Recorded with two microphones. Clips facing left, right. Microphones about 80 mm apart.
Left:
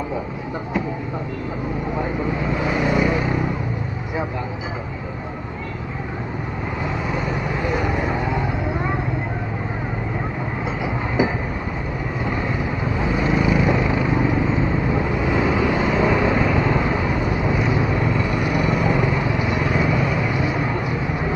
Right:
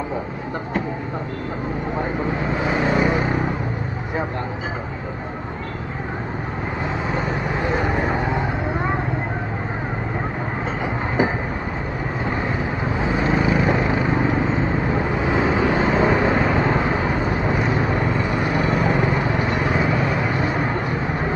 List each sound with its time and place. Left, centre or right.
2.0 s vehicle: right
7.1 s vehicle: right
12.8 s vehicle: right